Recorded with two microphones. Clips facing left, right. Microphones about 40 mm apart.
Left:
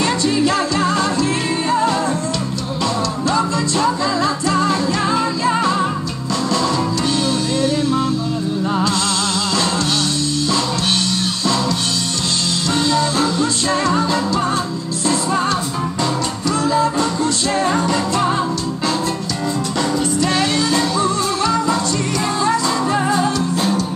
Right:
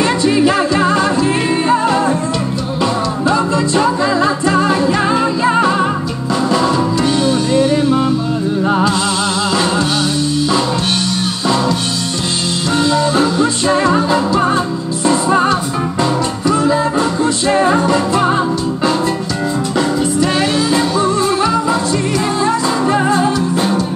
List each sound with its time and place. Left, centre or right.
0.0 s music: centre
12.7 s music: centre
19.8 s music: centre